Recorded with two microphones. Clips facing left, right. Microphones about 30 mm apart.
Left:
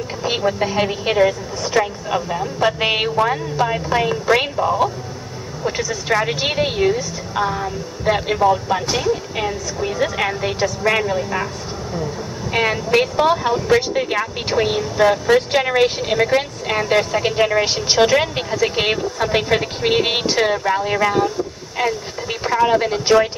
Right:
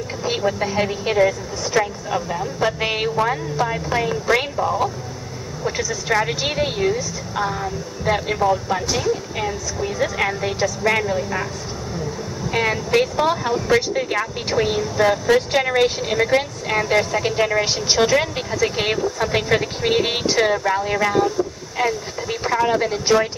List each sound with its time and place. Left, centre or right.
0.2 s speech: centre
12.5 s speech: centre